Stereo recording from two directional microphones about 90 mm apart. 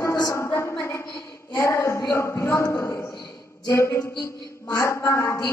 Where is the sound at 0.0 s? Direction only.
40° left (ahead or behind).